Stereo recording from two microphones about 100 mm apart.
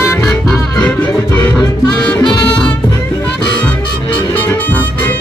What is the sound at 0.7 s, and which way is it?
Music, 15° left (ahead or behind).